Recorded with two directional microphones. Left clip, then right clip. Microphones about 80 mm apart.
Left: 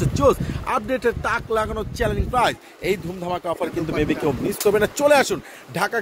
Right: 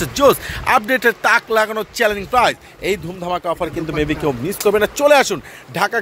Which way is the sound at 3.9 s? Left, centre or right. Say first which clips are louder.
Right 3 dB; centre.